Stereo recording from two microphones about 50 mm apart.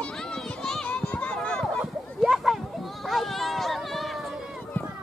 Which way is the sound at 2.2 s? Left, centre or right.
Centre.